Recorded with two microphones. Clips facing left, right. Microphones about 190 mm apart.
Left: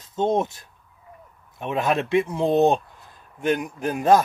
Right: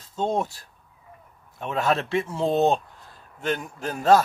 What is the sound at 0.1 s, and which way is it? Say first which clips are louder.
Speech: left 3 dB; 20° left (ahead or behind).